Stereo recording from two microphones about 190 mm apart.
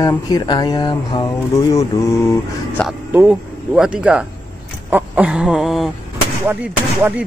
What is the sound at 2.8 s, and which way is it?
Music, 10° right (ahead or behind).